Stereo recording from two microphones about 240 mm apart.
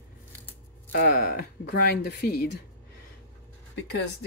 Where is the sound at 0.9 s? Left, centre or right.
Left.